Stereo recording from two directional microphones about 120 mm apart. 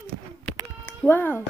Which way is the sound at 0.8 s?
15° left (ahead or behind).